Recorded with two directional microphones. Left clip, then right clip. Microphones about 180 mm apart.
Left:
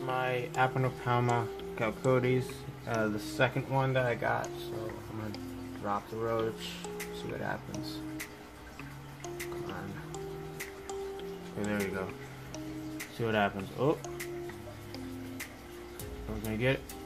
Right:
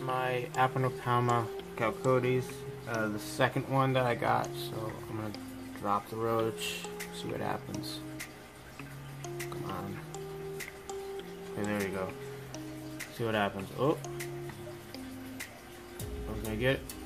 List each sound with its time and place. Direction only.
0.0 s speech: 5° right (ahead or behind)
3.7 s speech: 25° right (ahead or behind)
5.9 s speech: 30° right (ahead or behind)
7.7 s speech: centre (ahead or behind)
11.8 s speech: 5° right (ahead or behind)
12.5 s music: centre (ahead or behind)
16.4 s speech: centre (ahead or behind)